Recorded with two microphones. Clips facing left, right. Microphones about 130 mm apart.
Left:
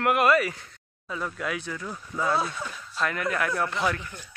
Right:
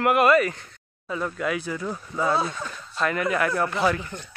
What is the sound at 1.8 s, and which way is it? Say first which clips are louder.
Speech: right 5 dB; 20° right (ahead or behind).